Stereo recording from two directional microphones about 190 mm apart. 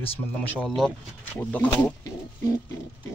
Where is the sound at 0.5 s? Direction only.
5° left (ahead or behind).